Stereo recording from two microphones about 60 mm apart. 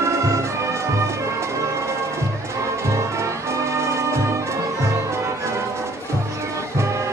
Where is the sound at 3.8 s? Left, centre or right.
Right.